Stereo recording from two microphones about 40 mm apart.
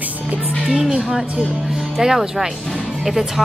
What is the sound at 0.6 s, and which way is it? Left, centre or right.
Speech, centre.